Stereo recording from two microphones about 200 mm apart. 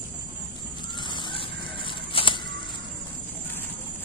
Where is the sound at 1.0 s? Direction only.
25° left (ahead or behind).